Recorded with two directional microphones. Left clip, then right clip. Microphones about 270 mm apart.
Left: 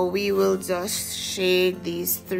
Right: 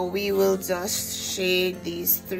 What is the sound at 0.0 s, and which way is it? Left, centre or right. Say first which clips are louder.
Music: left 1 dB; centre.